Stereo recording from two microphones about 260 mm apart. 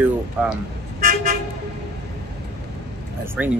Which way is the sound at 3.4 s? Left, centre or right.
Centre.